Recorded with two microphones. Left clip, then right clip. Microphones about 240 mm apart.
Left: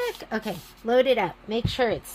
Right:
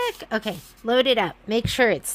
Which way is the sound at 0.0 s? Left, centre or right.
Right.